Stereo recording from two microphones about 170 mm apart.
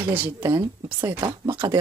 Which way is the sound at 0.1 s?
15° right (ahead or behind).